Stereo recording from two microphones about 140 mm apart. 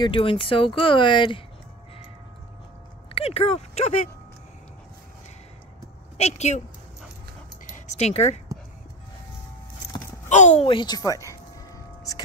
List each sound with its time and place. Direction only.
0.0 s speech: 40° left (ahead or behind)
3.2 s speech: 45° left (ahead or behind)
6.1 s speech: 50° left (ahead or behind)
7.8 s speech: 55° left (ahead or behind)
10.2 s speech: 55° left (ahead or behind)
10.7 s speech: 35° left (ahead or behind)
11.0 s speech: 20° left (ahead or behind)